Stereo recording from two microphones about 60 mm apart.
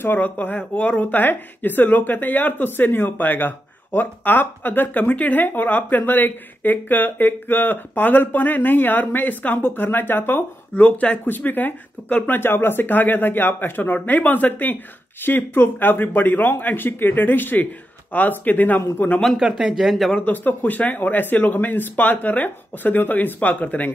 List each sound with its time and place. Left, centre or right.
0.0 s speech: left
12.4 s speech: left
19.3 s speech: centre
20.2 s speech: left